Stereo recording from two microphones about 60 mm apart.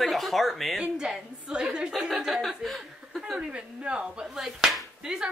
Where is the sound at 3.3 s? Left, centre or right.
Centre.